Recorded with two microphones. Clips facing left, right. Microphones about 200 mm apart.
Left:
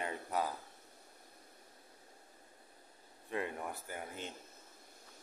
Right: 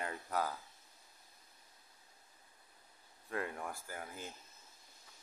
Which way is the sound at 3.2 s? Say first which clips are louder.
Left 2 dB; 15° left (ahead or behind).